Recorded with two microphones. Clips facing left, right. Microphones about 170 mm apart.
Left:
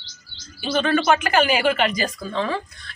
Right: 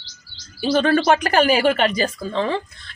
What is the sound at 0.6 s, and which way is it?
Speech, 35° right (ahead or behind).